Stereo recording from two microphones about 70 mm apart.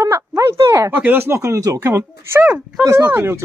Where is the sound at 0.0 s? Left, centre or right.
Right.